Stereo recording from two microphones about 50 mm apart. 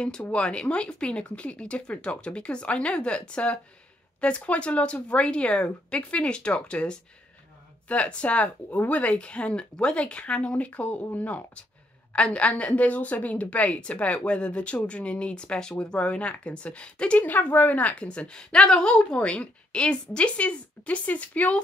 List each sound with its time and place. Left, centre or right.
0.3 s a woman's voice: left
17.2 s a woman's voice: left